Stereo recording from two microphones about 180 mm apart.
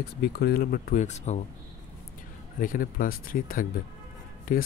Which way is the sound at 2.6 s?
50° left (ahead or behind).